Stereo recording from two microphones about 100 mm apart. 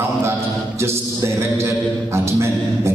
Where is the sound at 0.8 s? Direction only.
25° right (ahead or behind).